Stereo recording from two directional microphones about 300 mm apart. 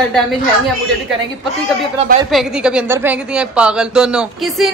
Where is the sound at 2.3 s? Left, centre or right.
Centre.